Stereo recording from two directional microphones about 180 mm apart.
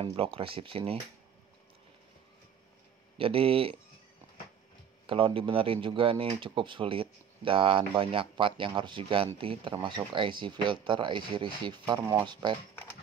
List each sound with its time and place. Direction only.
0.0 s speech: 30° right (ahead or behind)
3.2 s speech: 30° right (ahead or behind)
5.0 s speech: 30° right (ahead or behind)